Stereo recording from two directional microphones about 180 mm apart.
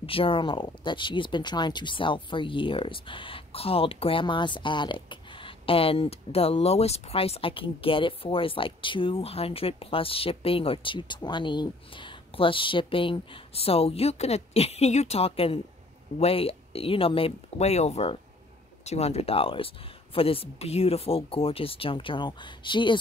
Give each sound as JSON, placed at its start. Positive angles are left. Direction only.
{"t": 0.0, "sound": "speech", "side_deg": 30}